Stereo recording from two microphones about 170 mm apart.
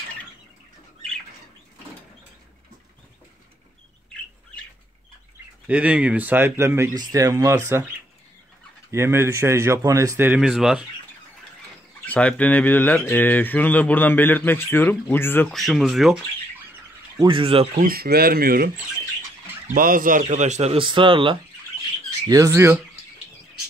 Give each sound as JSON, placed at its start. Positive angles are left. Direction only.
{"t": 5.7, "sound": "speech", "side_deg": -10}
{"t": 8.9, "sound": "speech", "side_deg": -15}
{"t": 12.0, "sound": "speech", "side_deg": 5}
{"t": 15.5, "sound": "speech", "side_deg": 0}
{"t": 17.2, "sound": "speech", "side_deg": -30}
{"t": 17.7, "sound": "speech", "side_deg": -60}
{"t": 19.7, "sound": "speech", "side_deg": -55}
{"t": 22.3, "sound": "speech", "side_deg": -15}